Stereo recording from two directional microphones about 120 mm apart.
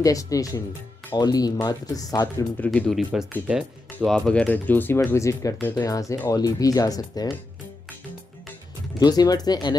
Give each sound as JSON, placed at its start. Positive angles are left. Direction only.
{"t": 0.0, "sound": "speech", "side_deg": 30}
{"t": 2.6, "sound": "speech", "side_deg": 5}
{"t": 3.4, "sound": "speech", "side_deg": -5}
{"t": 4.1, "sound": "speech", "side_deg": 5}
{"t": 5.9, "sound": "speech", "side_deg": 30}
{"t": 9.0, "sound": "speech", "side_deg": 35}